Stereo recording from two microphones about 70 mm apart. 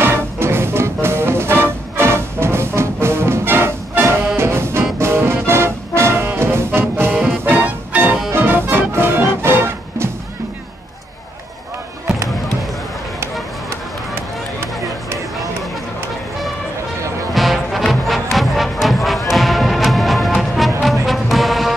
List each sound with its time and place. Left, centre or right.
0.0 s music: right
17.3 s music: centre